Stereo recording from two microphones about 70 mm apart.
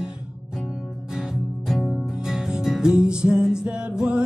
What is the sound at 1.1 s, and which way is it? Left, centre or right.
Music, centre.